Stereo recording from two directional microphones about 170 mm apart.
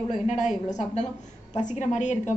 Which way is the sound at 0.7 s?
45° left (ahead or behind).